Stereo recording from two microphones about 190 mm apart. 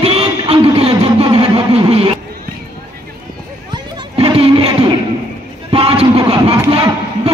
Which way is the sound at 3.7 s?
25° right (ahead or behind).